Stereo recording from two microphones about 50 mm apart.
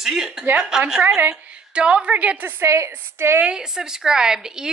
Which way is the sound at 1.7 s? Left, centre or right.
Right.